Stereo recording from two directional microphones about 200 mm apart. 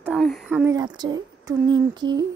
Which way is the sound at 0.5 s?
15° right (ahead or behind).